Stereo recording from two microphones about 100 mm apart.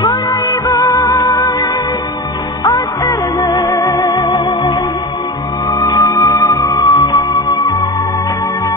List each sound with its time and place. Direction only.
0.0 s music: 35° left (ahead or behind)
2.7 s music: 30° left (ahead or behind); by 4.7 s 50° left (ahead or behind)
5.8 s music: 35° left (ahead or behind)